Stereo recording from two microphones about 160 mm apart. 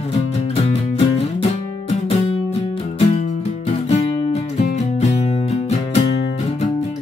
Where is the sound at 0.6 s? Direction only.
35° left (ahead or behind).